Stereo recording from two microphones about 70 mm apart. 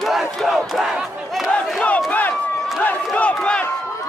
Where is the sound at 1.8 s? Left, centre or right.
Left.